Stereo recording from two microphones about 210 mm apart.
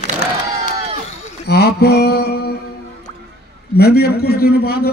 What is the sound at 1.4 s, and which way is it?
Mantra, 50° left (ahead or behind).